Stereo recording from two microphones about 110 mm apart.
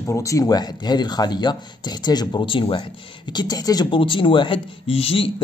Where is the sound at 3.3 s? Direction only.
40° left (ahead or behind).